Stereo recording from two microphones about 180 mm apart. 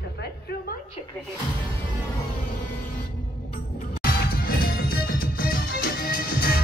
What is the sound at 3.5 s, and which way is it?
Music, 55° left (ahead or behind).